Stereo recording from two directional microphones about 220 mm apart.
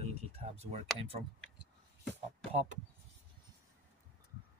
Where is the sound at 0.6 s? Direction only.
30° right (ahead or behind).